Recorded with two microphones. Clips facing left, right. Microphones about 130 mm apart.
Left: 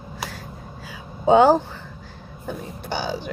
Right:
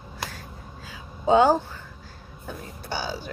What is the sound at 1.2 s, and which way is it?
Speech, 15° left (ahead or behind).